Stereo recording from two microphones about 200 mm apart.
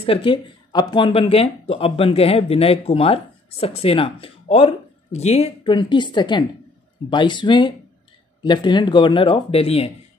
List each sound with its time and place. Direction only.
0.0 s speech: 25° left (ahead or behind)